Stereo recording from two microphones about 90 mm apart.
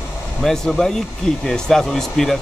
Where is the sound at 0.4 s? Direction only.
5° left (ahead or behind).